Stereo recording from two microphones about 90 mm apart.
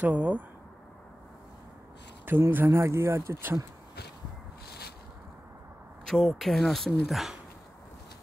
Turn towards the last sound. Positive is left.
turn(degrees=0)  # may be behind; listen again after turning